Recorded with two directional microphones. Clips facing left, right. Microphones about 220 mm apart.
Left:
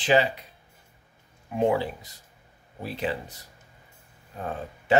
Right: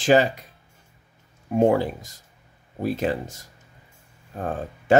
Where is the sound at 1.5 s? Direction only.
45° right (ahead or behind).